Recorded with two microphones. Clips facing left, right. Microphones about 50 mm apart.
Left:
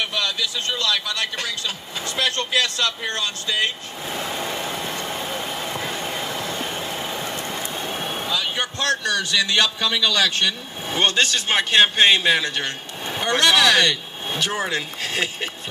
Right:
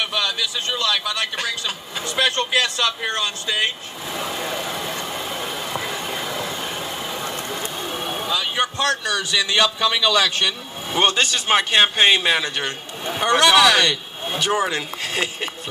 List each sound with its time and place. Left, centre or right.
0.0 s a man's voice: centre
4.2 s vehicle: centre
6.7 s train: centre
7.2 s vehicle: right
7.9 s vehicle: centre
8.3 s a man's voice: centre